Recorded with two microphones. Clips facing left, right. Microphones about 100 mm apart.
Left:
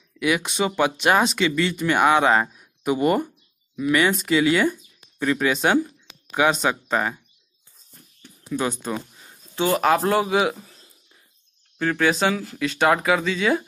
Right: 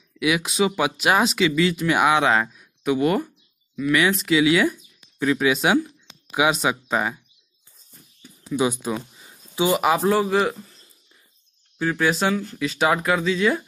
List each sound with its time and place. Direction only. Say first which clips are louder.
0.2 s speech: right 1 dB; 5° right (ahead or behind)
2.4 s speech: right 1 dB; 10° left (ahead or behind)
3.3 s a sound: left 3 dB; 15° left (ahead or behind)
3.9 s speech: even; centre (ahead or behind)
8.2 s speech: right 3 dB; 5° right (ahead or behind)
11.8 s speech: left 1 dB; 5° right (ahead or behind)